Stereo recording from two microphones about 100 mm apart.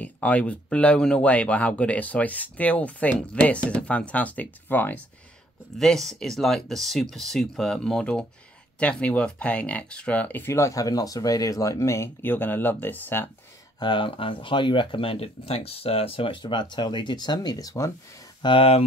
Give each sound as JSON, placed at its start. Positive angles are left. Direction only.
{"t": 0.0, "sound": "speech", "side_deg": 15}
{"t": 5.8, "sound": "speech", "side_deg": 5}
{"t": 13.7, "sound": "speech", "side_deg": 55}
{"t": 18.4, "sound": "speech", "side_deg": 60}